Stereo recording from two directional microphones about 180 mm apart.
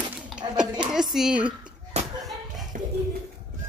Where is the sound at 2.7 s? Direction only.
50° right (ahead or behind).